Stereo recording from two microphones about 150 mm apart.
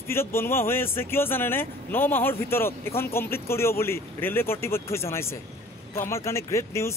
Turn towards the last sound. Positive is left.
turn(degrees=20)  # may be behind; listen again after turning